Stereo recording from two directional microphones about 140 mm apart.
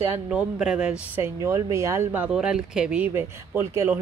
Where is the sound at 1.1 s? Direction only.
20° right (ahead or behind).